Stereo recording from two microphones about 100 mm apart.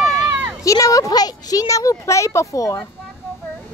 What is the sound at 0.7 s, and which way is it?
Speech, 35° left (ahead or behind).